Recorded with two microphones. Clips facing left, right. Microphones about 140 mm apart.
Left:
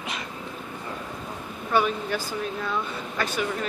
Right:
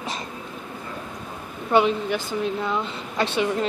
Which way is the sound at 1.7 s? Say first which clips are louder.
Right 4 dB; 20° right (ahead or behind).